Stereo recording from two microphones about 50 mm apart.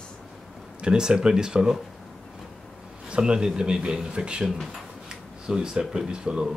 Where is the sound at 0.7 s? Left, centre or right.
Centre.